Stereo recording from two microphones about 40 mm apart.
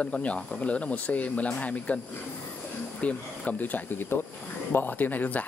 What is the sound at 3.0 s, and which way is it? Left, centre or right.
Speech, left.